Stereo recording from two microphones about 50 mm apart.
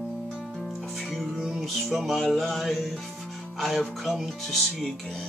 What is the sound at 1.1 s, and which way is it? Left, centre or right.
Music, centre.